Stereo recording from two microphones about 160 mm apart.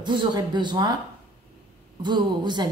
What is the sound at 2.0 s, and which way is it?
Speech, 30° right (ahead or behind).